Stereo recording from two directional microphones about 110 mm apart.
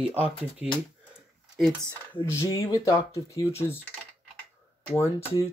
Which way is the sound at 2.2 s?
30° left (ahead or behind).